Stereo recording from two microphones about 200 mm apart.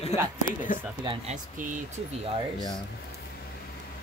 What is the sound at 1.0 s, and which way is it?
Speech, 35° right (ahead or behind).